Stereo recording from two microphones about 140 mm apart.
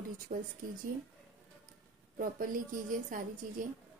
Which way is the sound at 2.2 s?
75° right (ahead or behind).